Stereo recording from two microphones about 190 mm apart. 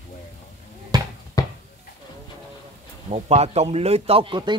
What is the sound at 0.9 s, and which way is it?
Basketball bounce, 20° right (ahead or behind).